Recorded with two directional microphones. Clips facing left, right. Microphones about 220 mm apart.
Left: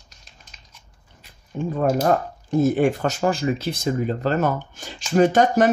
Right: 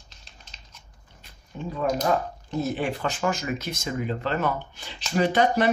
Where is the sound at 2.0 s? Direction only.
50° left (ahead or behind).